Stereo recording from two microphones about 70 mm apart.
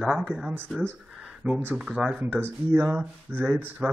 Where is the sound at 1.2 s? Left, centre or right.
Centre.